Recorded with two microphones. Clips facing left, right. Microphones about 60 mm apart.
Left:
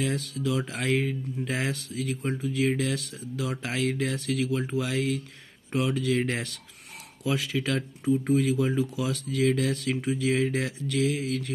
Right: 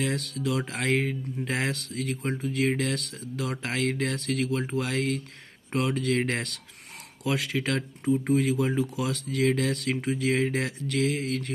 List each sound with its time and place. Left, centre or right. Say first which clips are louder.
0.0 s speech: even; right